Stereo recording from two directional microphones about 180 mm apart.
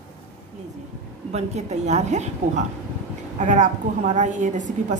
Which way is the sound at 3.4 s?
40° right (ahead or behind).